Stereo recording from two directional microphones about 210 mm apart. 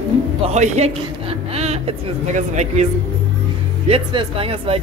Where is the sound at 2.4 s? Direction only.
35° right (ahead or behind).